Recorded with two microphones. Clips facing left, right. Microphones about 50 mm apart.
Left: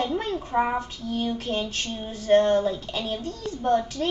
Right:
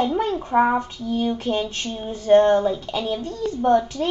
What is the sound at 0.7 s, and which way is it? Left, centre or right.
A woman's voice, right.